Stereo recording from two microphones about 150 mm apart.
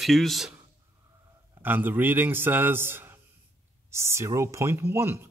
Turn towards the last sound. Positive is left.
turn(degrees=-15)  # may be behind; listen again after turning